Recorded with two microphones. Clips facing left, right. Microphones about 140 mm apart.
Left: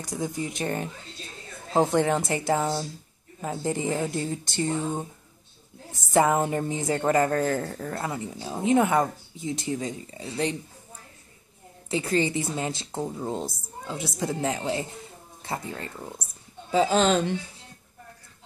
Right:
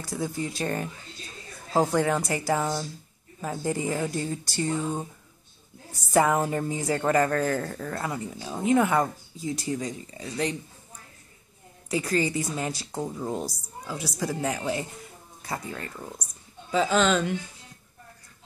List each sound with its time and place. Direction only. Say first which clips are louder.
0.0 s speech: even; 20° left (ahead or behind)
11.9 s speech: left 1 dB; 25° left (ahead or behind)
16.7 s speech: left 2 dB; 35° left (ahead or behind)